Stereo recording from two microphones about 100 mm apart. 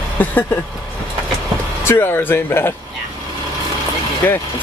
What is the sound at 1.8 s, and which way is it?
Speech, 25° left (ahead or behind).